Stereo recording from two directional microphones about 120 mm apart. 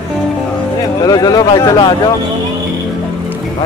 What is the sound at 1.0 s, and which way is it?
Speech, 30° left (ahead or behind).